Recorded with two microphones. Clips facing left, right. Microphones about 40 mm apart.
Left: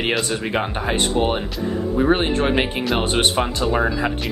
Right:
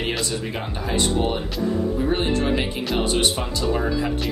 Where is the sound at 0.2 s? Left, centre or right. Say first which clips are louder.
Left 5 dB; left.